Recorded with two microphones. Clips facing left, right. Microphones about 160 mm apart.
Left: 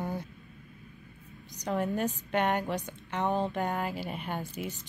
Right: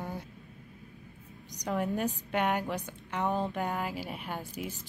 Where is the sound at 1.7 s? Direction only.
5° right (ahead or behind).